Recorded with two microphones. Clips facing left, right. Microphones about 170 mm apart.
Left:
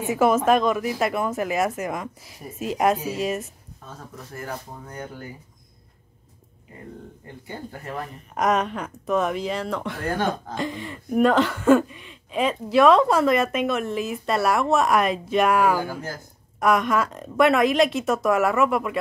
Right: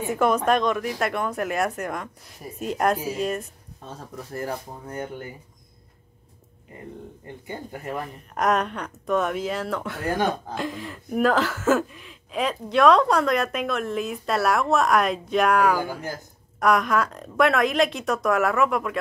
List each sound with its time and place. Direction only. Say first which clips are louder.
0.0 s speech: left 2 dB; 5° left (ahead or behind)
3.8 s speech: right 3 dB; 30° right (ahead or behind)
8.4 s speech: left 1 dB; centre (ahead or behind)